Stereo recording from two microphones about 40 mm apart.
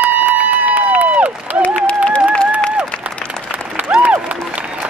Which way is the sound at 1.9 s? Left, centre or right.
Left.